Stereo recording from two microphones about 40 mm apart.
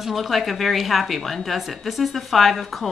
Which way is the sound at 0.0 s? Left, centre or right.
Centre.